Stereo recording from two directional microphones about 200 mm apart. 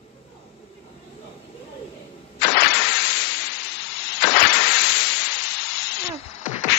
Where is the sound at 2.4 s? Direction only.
55° left (ahead or behind).